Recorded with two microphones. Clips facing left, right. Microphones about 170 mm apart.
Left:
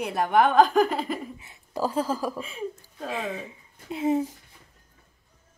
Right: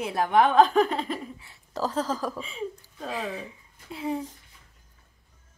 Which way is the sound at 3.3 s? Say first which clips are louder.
Left 1 dB; 20° left (ahead or behind).